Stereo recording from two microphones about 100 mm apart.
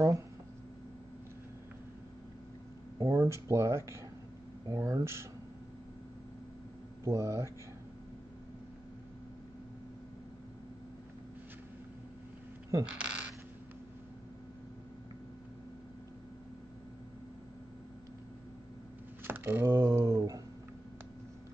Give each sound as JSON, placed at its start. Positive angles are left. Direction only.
{"t": 3.0, "sound": "speech", "side_deg": -30}
{"t": 7.1, "sound": "speech", "side_deg": -30}
{"t": 12.8, "sound": "zipper", "side_deg": -10}
{"t": 19.2, "sound": "a sound", "side_deg": -20}
{"t": 19.7, "sound": "speech", "side_deg": -30}